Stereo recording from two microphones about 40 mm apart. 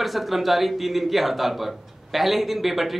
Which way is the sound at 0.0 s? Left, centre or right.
Centre.